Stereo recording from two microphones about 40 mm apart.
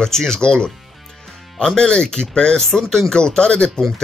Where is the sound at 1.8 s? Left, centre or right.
Centre.